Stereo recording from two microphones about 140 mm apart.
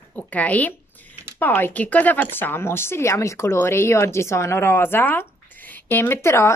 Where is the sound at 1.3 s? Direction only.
15° left (ahead or behind).